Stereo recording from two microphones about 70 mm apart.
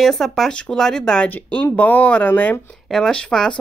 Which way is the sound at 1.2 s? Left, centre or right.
Left.